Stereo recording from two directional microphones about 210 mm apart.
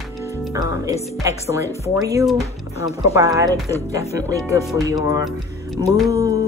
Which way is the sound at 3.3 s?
15° right (ahead or behind).